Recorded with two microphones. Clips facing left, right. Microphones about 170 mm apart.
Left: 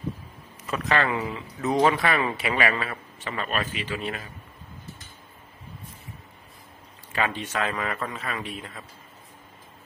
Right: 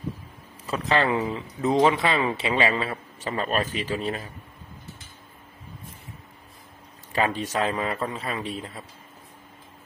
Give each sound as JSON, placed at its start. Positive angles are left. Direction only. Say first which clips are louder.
{"t": 0.7, "sound": "speech", "louder": "right 2 dB", "side_deg": -30}
{"t": 3.2, "sound": "a man's voice", "louder": "right 3 dB", "side_deg": -35}
{"t": 7.1, "sound": "a man's voice", "louder": "right 3 dB", "side_deg": -35}